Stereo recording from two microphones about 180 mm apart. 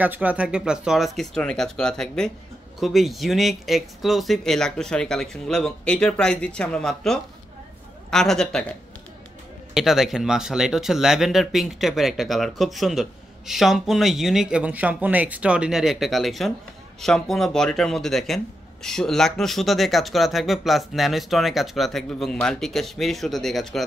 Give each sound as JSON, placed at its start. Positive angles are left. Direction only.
{"t": 0.0, "sound": "speech", "side_deg": -10}
{"t": 9.8, "sound": "speech", "side_deg": 0}